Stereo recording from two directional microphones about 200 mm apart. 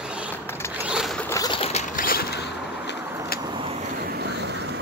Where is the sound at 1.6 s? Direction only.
35° left (ahead or behind); by 3.3 s 55° left (ahead or behind).